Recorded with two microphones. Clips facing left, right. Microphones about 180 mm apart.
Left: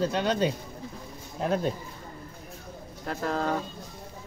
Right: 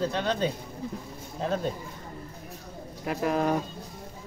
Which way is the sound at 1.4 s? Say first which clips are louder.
Left 2 dB; 5° left (ahead or behind).